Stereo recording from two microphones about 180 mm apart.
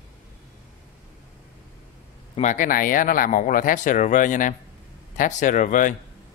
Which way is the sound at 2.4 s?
45° left (ahead or behind).